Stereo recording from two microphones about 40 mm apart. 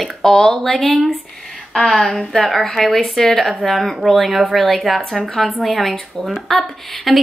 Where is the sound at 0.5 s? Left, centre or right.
Centre.